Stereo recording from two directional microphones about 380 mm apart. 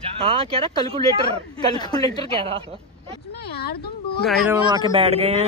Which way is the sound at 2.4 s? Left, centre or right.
Centre.